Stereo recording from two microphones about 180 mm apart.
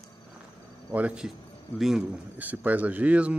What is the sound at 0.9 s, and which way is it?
A man's voice, 5° right (ahead or behind).